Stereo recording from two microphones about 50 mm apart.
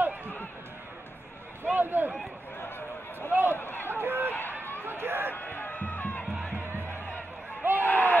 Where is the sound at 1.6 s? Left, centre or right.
Right.